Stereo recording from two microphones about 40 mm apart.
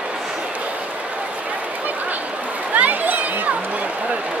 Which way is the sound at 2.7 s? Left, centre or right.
Right.